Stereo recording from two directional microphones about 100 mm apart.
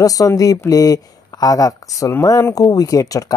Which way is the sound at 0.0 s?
35° left (ahead or behind).